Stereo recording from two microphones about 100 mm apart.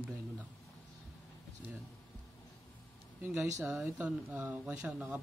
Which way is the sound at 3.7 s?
10° right (ahead or behind).